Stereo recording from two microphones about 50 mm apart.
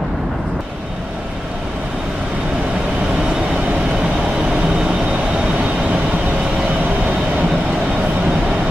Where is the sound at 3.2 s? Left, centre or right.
Centre.